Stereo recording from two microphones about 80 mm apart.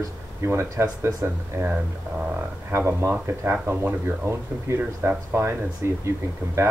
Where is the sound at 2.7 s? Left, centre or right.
Right.